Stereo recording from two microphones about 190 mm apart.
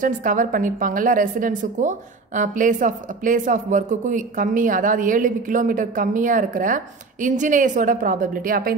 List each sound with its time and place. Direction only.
0.0 s a woman's voice: 45° right (ahead or behind)